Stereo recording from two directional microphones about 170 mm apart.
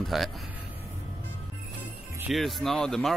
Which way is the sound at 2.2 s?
Centre (ahead or behind).